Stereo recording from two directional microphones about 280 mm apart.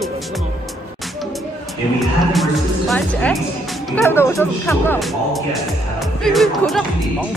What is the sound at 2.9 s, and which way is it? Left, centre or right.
Speech, centre.